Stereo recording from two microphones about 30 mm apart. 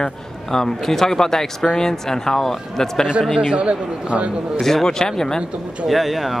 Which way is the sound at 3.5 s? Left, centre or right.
Right.